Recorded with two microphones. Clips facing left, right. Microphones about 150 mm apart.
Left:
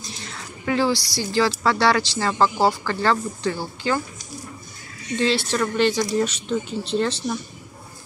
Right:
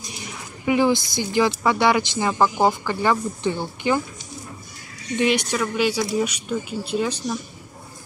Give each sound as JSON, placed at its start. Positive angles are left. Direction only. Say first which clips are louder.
{"t": 0.0, "sound": "a sound", "louder": "right 1 dB", "side_deg": -15}
{"t": 1.6, "sound": "speech", "louder": "right 1 dB", "side_deg": -15}
{"t": 5.1, "sound": "speech", "louder": "right 1 dB", "side_deg": -15}